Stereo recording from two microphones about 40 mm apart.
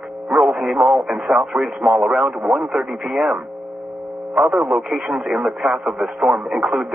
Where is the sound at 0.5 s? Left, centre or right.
Centre.